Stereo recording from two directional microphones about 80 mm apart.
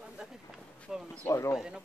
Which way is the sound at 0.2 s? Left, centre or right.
Centre.